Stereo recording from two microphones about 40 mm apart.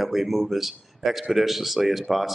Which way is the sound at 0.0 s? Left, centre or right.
Centre.